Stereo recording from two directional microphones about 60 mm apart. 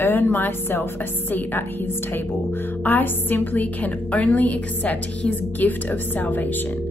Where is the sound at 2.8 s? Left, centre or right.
Left.